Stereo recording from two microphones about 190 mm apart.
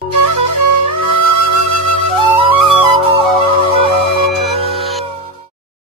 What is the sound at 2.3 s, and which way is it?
Flute, 30° right (ahead or behind).